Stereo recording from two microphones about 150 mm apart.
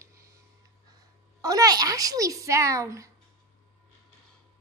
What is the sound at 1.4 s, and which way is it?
Speech, 25° right (ahead or behind).